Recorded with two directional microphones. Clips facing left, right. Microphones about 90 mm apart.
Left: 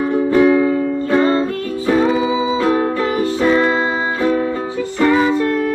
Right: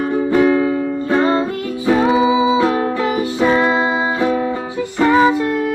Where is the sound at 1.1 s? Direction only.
15° right (ahead or behind).